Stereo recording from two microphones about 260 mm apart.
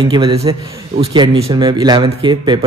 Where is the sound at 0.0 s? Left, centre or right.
Centre.